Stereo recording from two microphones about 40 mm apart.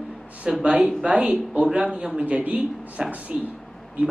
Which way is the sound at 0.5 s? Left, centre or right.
Right.